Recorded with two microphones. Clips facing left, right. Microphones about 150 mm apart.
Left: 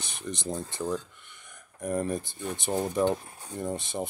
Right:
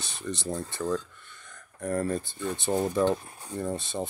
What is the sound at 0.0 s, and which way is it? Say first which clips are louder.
Speech: right 1 dB; 15° left (ahead or behind).